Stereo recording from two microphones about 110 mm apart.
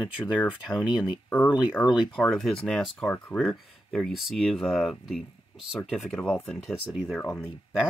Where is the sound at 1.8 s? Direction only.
10° left (ahead or behind).